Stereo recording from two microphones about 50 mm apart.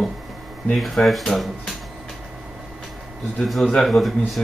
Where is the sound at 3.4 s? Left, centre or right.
Centre.